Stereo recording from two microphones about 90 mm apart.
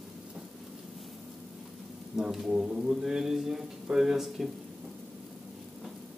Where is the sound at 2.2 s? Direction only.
5° right (ahead or behind).